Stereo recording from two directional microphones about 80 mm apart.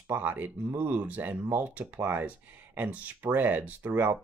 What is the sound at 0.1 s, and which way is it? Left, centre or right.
Speech, right.